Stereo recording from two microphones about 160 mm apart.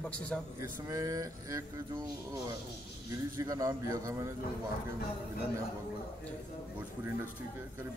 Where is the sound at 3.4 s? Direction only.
20° right (ahead or behind).